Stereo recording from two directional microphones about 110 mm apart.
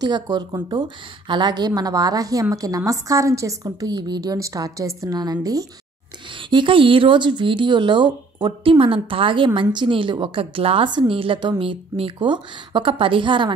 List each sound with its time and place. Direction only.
0.0 s a woman's voice: 40° right (ahead or behind)
6.5 s speech: 50° right (ahead or behind)